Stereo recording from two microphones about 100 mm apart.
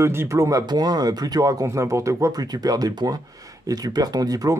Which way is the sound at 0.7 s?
45° right (ahead or behind).